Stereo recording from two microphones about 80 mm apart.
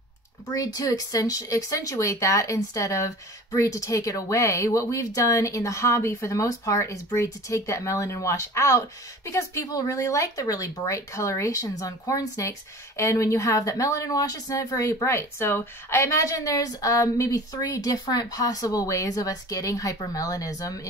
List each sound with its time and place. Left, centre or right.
0.5 s speech: left
15.0 s speech: left